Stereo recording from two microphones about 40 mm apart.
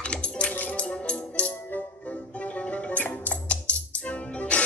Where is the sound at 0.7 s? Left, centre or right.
Left.